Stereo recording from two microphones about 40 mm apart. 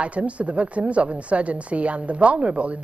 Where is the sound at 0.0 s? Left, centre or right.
Right.